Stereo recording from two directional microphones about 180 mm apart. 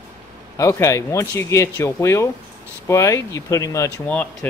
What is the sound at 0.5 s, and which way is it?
Speech, 15° left (ahead or behind).